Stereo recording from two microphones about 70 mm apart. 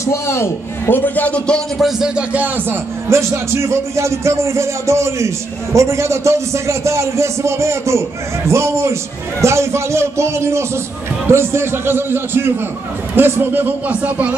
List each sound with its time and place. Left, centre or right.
0.0 s a man's voice: left; by 1.6 s centre
1.8 s speech: centre
2.3 s speech: right
3.1 s a man's voice: right